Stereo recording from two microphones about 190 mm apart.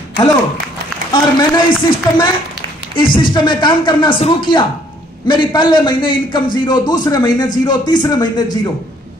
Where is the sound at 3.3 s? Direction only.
25° left (ahead or behind).